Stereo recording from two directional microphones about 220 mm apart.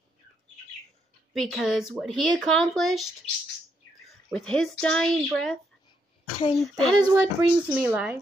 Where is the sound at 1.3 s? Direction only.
Centre (ahead or behind).